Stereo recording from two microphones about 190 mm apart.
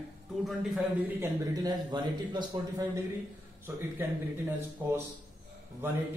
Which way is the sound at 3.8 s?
10° right (ahead or behind).